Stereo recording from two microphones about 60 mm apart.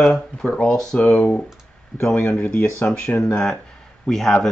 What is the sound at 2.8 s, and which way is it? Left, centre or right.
Speech, centre.